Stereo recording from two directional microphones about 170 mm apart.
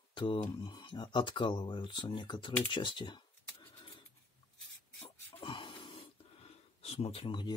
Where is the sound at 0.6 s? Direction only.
25° left (ahead or behind).